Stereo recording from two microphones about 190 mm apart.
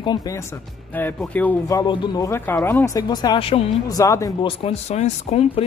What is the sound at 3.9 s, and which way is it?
Speech, 15° left (ahead or behind).